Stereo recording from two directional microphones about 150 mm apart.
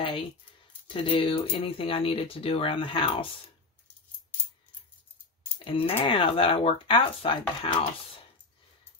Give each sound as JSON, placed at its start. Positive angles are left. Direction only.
{"t": 0.8, "sound": "speech", "side_deg": 35}
{"t": 5.6, "sound": "speech", "side_deg": 35}